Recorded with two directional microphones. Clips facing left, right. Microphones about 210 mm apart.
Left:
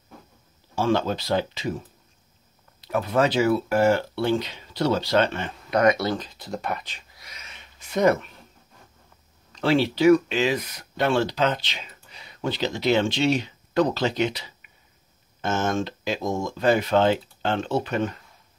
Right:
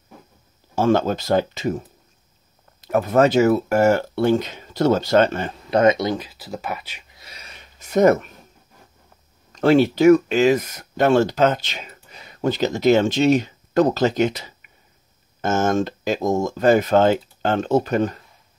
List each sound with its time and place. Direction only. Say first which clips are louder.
0.7 s speech: right 5 dB; 45° right (ahead or behind)
2.8 s speech: right 6 dB; 45° right (ahead or behind)
5.8 s speech: right 3 dB; 20° right (ahead or behind)
7.2 s a sound: right 5 dB; 30° right (ahead or behind)
9.5 s speech: right 6 dB; 45° right (ahead or behind)